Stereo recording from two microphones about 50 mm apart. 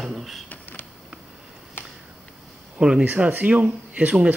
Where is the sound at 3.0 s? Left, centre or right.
Right.